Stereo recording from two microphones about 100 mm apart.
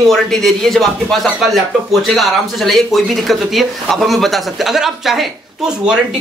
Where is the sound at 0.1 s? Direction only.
5° left (ahead or behind).